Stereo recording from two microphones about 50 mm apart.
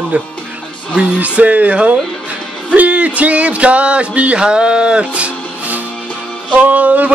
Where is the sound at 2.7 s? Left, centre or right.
Right.